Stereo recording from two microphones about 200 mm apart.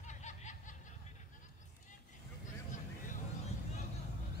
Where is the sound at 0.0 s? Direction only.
35° left (ahead or behind).